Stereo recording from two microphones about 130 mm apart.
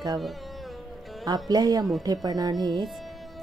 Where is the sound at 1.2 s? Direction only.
30° right (ahead or behind).